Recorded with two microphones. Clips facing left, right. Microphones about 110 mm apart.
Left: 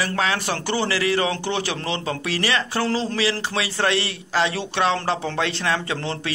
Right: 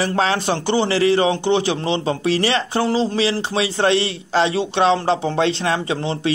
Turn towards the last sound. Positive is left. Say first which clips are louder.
# right 5 dB
turn(degrees=-25)  # may be behind; listen again after turning